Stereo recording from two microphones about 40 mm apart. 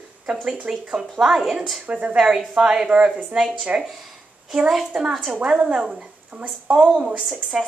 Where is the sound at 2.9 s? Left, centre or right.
Right.